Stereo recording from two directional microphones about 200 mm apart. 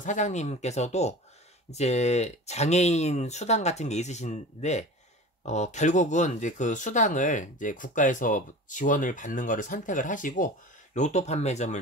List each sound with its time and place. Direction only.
0.0 s speech: 35° left (ahead or behind)